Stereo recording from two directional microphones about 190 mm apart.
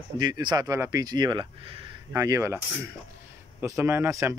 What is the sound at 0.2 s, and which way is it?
Speech, 20° right (ahead or behind).